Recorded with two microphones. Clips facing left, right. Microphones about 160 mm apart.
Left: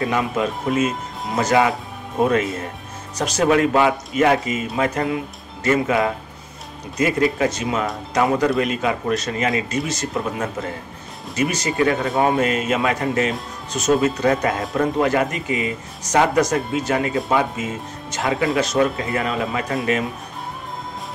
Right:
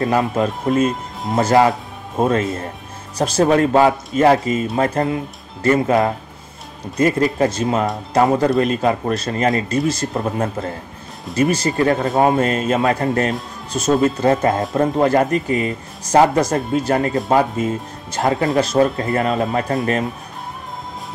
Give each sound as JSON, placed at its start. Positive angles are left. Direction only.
{"t": 0.0, "sound": "speech", "side_deg": -40}
{"t": 0.7, "sound": "speech", "side_deg": 5}
{"t": 1.3, "sound": "speech", "side_deg": -30}
{"t": 16.1, "sound": "speech", "side_deg": -30}